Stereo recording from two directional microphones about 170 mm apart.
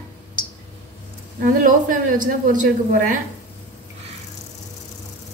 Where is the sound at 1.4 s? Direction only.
50° right (ahead or behind).